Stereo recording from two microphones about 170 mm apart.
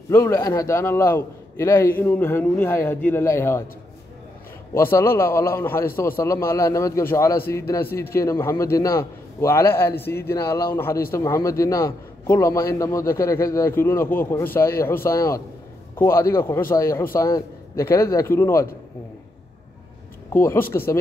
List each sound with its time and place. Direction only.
0.1 s a man's voice: 15° left (ahead or behind)
4.7 s a man's voice: 15° left (ahead or behind)
20.3 s a man's voice: 15° left (ahead or behind)